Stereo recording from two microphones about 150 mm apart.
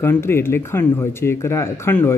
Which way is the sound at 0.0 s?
15° left (ahead or behind).